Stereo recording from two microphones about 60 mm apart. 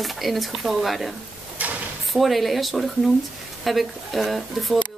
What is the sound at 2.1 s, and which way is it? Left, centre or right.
Speech, centre.